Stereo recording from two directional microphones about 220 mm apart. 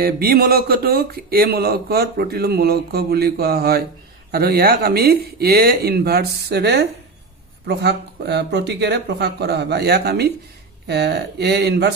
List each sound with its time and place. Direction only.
0.0 s speech: 45° right (ahead or behind)